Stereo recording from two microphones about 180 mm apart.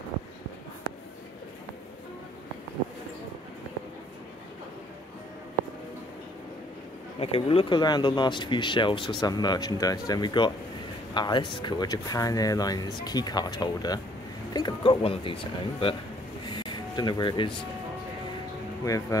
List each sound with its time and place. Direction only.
7.2 s speech: 35° left (ahead or behind)
16.5 s music: 25° left (ahead or behind)
18.9 s speech: 20° left (ahead or behind)